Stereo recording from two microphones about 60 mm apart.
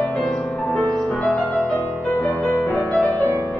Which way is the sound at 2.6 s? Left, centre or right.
Centre.